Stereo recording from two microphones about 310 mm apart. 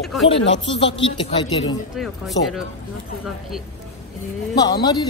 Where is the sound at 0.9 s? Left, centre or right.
Centre.